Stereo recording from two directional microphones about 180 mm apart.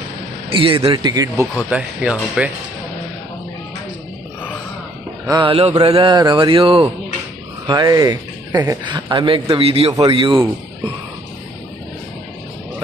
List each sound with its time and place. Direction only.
0.5 s a man's voice: 30° right (ahead or behind)
1.7 s speech: 5° right (ahead or behind)
5.3 s speech: 30° right (ahead or behind)
7.6 s speech: 20° right (ahead or behind)